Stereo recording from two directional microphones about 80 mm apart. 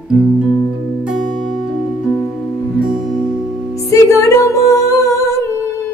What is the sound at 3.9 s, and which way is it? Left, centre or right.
Music, left.